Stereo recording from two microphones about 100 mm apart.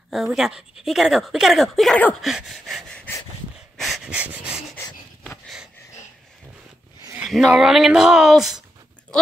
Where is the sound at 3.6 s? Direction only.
Centre (ahead or behind).